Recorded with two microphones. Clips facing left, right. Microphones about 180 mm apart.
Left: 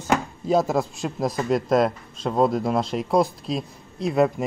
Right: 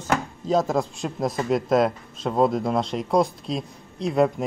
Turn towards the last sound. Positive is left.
turn(degrees=0)  # may be behind; listen again after turning